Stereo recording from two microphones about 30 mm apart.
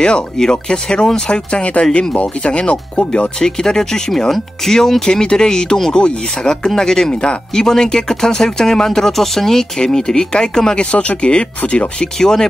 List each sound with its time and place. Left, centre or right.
0.5 s speech: left
1.6 s speech: left
3.3 s speech: left
5.1 s speech: left
10.8 s speech: left
12.2 s speech: centre